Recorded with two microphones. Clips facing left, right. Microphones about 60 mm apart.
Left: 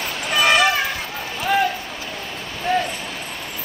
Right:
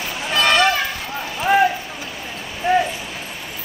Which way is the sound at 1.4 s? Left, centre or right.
Centre.